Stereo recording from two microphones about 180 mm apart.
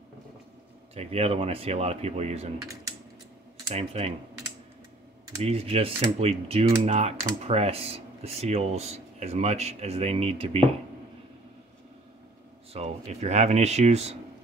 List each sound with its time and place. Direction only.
0.9 s speech: 35° right (ahead or behind)
3.7 s speech: 35° right (ahead or behind)
5.4 s speech: 35° right (ahead or behind)
12.7 s speech: 40° right (ahead or behind)